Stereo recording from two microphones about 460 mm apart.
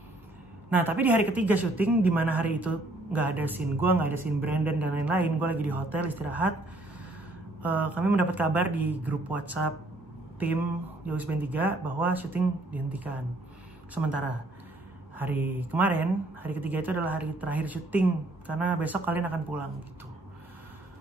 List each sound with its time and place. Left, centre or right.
0.7 s a woman's voice: centre
7.6 s a woman's voice: centre
11.1 s a woman's voice: centre
15.1 s a woman's voice: centre